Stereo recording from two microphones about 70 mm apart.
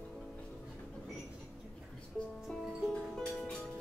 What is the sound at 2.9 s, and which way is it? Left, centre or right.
Music, centre.